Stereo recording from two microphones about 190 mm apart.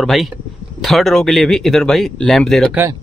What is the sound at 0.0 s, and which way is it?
Speech, centre (ahead or behind).